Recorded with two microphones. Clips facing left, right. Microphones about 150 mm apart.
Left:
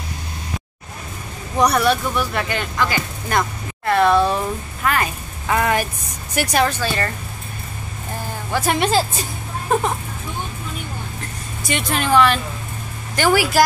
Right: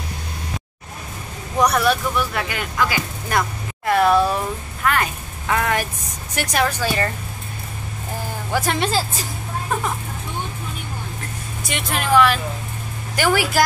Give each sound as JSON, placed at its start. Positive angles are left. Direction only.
{"t": 1.6, "sound": "a woman's voice", "side_deg": 0}
{"t": 6.8, "sound": "speech", "side_deg": -15}
{"t": 8.6, "sound": "a woman's voice", "side_deg": 15}
{"t": 11.6, "sound": "speech", "side_deg": 0}